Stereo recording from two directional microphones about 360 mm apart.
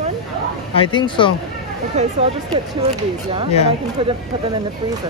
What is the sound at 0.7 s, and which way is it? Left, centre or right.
Speech, centre.